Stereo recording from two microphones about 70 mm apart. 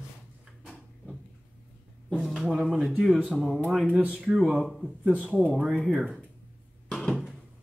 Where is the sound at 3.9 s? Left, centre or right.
Centre.